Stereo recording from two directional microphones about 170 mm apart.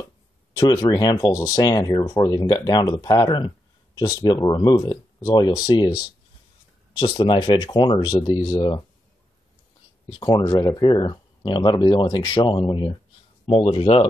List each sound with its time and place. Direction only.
0.6 s speech: 20° left (ahead or behind)
10.0 s speech: 25° left (ahead or behind)